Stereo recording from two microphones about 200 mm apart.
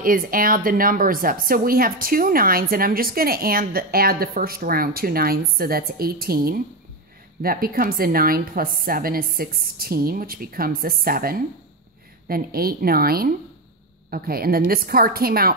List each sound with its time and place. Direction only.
0.0 s a woman's voice: 45° right (ahead or behind)